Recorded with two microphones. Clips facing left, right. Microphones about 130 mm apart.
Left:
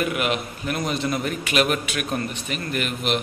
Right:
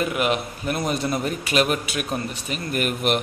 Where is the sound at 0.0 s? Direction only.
35° right (ahead or behind).